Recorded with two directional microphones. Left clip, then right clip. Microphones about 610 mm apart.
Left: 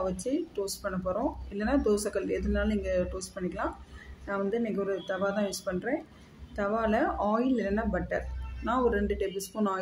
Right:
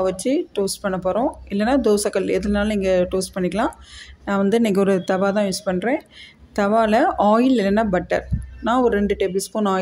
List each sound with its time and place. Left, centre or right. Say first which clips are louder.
0.0 s speech: right 11 dB; centre